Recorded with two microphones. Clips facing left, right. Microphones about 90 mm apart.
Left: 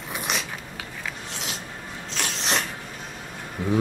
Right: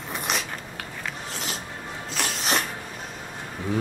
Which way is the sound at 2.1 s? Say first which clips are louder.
Right 1 dB; centre (ahead or behind).